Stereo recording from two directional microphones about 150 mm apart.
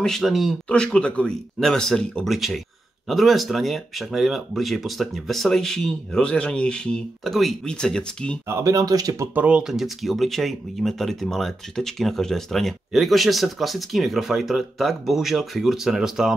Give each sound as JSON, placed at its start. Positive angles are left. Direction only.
{"t": 0.0, "sound": "speech", "side_deg": 0}
{"t": 8.5, "sound": "speech", "side_deg": -20}
{"t": 9.3, "sound": "speech", "side_deg": -10}